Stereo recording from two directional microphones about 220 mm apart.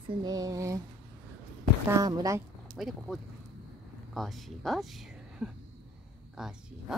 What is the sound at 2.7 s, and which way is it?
Speech, centre (ahead or behind).